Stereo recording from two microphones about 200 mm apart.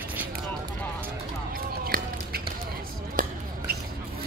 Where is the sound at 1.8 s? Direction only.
50° right (ahead or behind).